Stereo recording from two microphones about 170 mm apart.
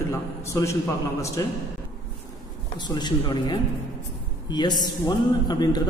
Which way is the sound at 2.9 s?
25° left (ahead or behind).